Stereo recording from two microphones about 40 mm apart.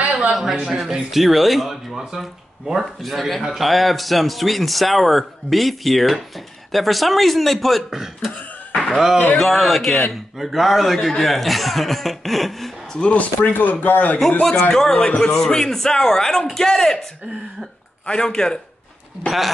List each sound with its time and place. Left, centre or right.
0.0 s a sound: right
0.3 s a man's voice: centre
3.0 s a man's voice: centre
7.9 s speech: centre
8.7 s a sound: centre
9.4 s a man's voice: centre
13.4 s speech: left
14.4 s a man's voice: centre
18.0 s a man's voice: centre
19.2 s a man's voice: centre